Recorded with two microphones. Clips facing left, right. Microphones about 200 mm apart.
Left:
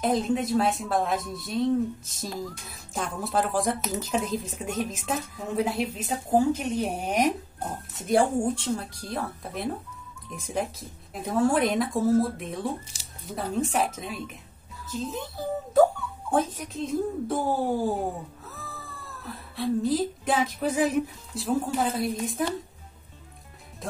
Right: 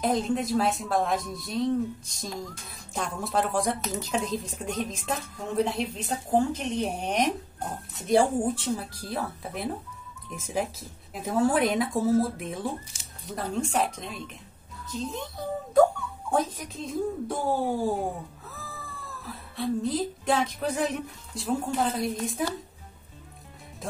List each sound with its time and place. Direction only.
0.0 s speech: centre (ahead or behind)
12.9 s speech: 35° left (ahead or behind)
13.3 s speech: centre (ahead or behind)
18.5 s cat: centre (ahead or behind)
19.2 s speech: centre (ahead or behind)
23.8 s music: centre (ahead or behind)